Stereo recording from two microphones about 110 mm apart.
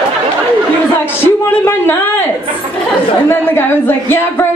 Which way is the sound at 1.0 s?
20° left (ahead or behind).